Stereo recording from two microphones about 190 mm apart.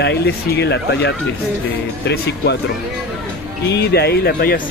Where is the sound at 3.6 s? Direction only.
60° left (ahead or behind).